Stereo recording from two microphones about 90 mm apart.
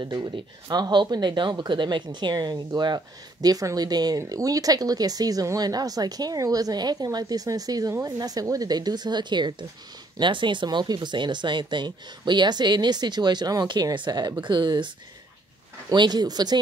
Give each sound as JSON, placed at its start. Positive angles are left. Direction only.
{"t": 0.0, "sound": "speech", "side_deg": -50}
{"t": 15.9, "sound": "speech", "side_deg": -50}